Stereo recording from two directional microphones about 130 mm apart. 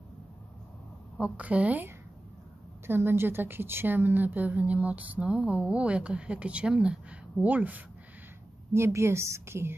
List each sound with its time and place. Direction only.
1.1 s a woman's voice: 10° right (ahead or behind)